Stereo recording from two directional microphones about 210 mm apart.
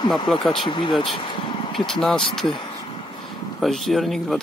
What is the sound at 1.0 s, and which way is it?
Vehicle, 25° left (ahead or behind).